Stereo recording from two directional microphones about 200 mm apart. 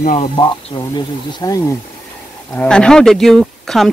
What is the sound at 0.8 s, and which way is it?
Speech, 20° left (ahead or behind).